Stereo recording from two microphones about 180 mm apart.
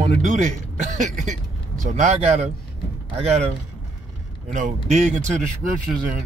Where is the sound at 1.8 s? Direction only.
40° right (ahead or behind).